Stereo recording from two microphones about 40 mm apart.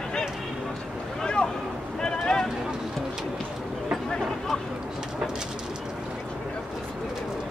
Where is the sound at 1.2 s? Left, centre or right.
Left.